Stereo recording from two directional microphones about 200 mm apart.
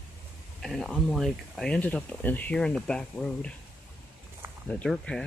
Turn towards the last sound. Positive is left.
turn(degrees=5)  # may be behind; listen again after turning